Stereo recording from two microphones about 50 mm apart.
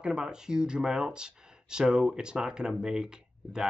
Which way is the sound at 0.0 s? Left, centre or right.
Centre.